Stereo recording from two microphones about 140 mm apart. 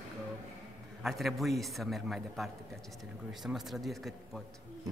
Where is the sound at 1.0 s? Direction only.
Centre (ahead or behind).